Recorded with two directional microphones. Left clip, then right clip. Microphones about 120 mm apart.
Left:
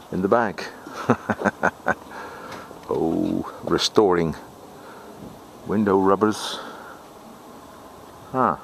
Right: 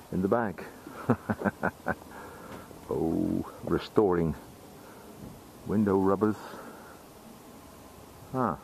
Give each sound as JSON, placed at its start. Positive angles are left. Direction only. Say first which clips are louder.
{"t": 0.1, "sound": "a sound", "louder": "left 8 dB", "side_deg": 35}
{"t": 3.4, "sound": "speech", "louder": "left 9 dB", "side_deg": 35}
{"t": 5.7, "sound": "speech", "louder": "left 7 dB", "side_deg": 35}
{"t": 8.3, "sound": "speech", "louder": "left 9 dB", "side_deg": 30}